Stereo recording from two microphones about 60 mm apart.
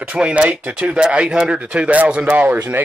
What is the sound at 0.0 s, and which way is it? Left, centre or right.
Speech, right.